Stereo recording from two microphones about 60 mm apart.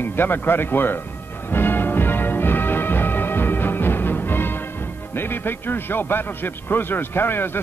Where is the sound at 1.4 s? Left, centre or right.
Left.